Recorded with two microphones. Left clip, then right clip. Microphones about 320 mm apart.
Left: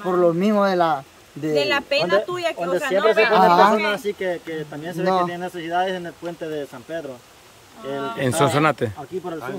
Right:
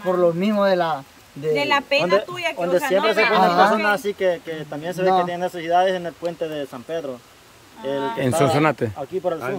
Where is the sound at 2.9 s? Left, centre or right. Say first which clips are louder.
Left 3 dB; right.